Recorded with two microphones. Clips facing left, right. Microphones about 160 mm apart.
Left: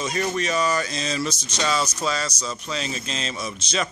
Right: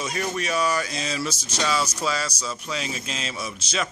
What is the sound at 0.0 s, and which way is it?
Speech, 5° right (ahead or behind).